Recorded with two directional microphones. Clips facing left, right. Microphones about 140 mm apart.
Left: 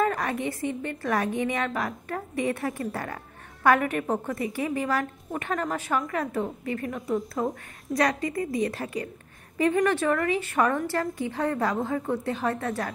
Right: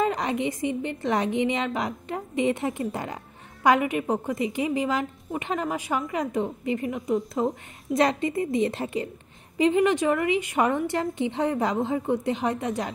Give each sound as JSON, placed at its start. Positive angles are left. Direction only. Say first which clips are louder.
{"t": 0.0, "sound": "a woman's voice", "louder": "right 1 dB", "side_deg": -20}